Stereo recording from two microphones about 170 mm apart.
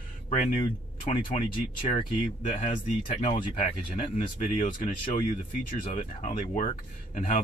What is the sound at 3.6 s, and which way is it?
Speech, 40° left (ahead or behind).